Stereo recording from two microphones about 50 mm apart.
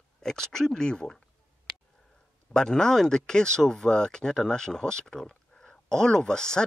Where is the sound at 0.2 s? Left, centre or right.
Centre.